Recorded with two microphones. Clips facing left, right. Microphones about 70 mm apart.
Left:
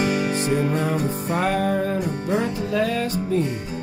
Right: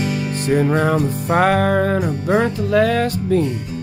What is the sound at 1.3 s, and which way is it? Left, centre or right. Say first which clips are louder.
Music: right 7 dB; right.